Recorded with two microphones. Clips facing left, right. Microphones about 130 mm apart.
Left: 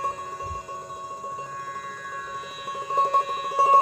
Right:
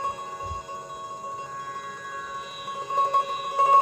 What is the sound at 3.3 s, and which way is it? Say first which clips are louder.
Music: left 1 dB; centre (ahead or behind).